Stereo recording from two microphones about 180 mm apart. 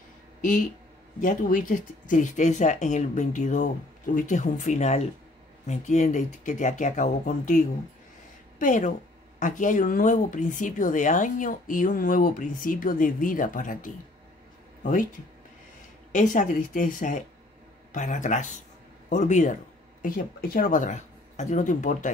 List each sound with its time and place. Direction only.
0.4 s speech: 45° left (ahead or behind)
16.1 s speech: 45° left (ahead or behind)
20.0 s speech: 55° left (ahead or behind)